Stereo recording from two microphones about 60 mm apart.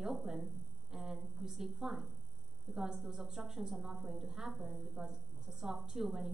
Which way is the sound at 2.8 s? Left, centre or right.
Centre.